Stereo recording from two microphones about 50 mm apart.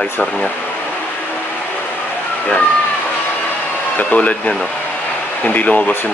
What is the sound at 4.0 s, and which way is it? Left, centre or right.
Speech, left.